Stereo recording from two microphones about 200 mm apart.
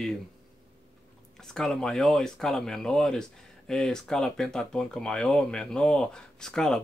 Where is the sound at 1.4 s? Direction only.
Centre (ahead or behind).